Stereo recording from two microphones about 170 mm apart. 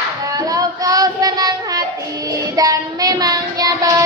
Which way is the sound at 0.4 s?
20° right (ahead or behind).